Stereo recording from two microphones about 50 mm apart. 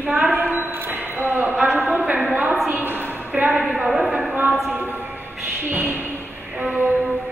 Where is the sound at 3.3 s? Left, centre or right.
Centre.